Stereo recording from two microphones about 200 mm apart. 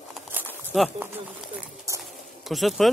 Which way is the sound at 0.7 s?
5° right (ahead or behind).